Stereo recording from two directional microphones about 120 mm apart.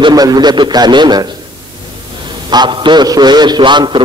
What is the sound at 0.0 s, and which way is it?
A man's voice, 30° right (ahead or behind).